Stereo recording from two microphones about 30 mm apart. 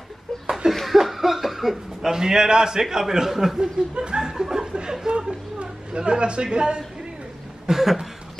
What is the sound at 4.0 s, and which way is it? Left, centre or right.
Chuckle, right.